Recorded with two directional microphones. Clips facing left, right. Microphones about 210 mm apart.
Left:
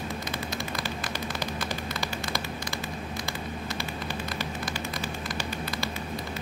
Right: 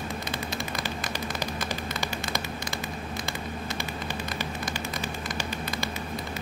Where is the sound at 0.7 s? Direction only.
20° right (ahead or behind).